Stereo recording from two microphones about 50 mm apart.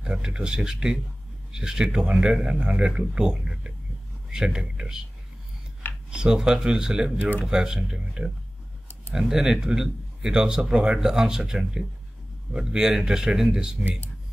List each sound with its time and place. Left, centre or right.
0.0 s speech: centre
6.0 s speech: centre